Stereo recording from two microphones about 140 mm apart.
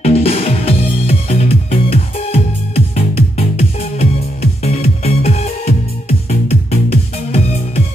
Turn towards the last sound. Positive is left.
turn(degrees=50)  # may be behind; listen again after turning